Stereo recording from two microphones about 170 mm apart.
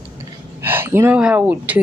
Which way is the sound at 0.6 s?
15° right (ahead or behind).